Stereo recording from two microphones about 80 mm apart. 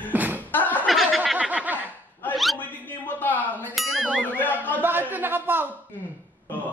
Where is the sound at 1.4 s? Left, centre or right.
Centre.